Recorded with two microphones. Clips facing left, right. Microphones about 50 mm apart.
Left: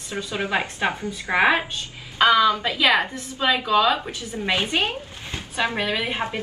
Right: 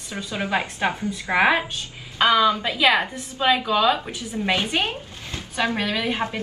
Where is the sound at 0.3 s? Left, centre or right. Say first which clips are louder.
Even; left.